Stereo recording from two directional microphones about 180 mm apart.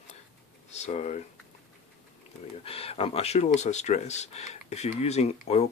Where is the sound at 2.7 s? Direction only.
35° left (ahead or behind).